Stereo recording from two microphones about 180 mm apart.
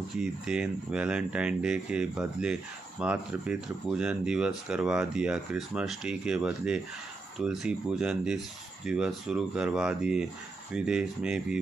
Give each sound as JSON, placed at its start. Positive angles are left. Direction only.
{"t": 0.2, "sound": "speech", "side_deg": -5}